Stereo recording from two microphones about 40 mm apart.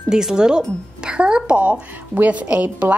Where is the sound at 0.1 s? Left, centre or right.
Centre.